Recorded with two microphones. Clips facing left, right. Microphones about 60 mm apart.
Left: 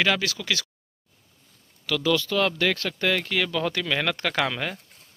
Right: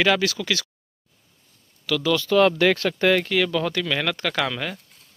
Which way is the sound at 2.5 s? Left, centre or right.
Right.